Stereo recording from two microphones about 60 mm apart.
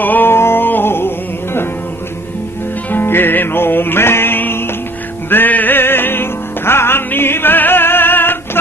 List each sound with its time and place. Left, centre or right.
0.0 s music: left
2.9 s music: left